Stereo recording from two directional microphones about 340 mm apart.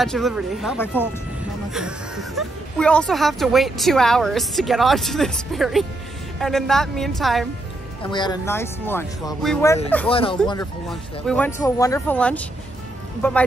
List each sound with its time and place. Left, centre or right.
0.0 s speech: centre
8.0 s speech: centre
10.0 s speech: centre
10.9 s speech: centre